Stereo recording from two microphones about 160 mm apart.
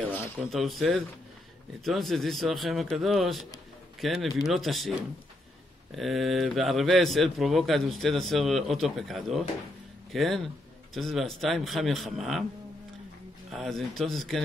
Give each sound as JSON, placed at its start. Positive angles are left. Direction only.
{"t": 0.1, "sound": "speech", "side_deg": 0}
{"t": 5.9, "sound": "speech", "side_deg": 0}
{"t": 13.5, "sound": "speech", "side_deg": 0}